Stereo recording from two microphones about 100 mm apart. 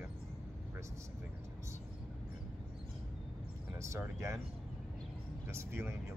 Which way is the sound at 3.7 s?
30° right (ahead or behind).